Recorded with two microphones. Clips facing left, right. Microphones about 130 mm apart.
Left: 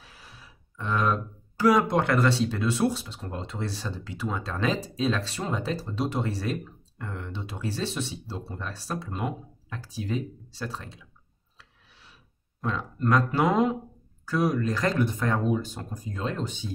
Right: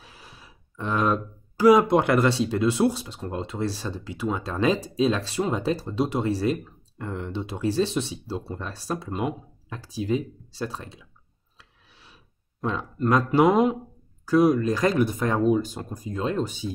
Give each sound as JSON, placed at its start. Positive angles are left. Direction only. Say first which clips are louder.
{"t": 0.2, "sound": "a sound", "louder": "right 2 dB", "side_deg": -20}
{"t": 1.6, "sound": "speech", "louder": "right 5 dB", "side_deg": -15}
{"t": 12.6, "sound": "speech", "louder": "right 2 dB", "side_deg": -20}